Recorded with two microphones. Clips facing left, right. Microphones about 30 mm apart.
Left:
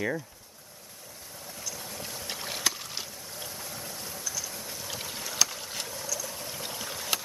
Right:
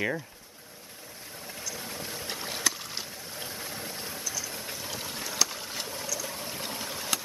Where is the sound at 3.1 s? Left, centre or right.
Right.